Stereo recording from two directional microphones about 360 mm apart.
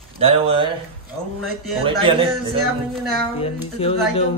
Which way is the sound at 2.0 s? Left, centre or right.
Centre.